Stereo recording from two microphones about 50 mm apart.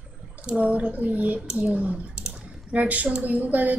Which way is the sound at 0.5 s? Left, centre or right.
Right.